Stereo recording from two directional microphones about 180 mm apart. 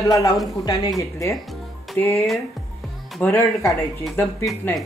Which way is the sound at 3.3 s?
15° left (ahead or behind).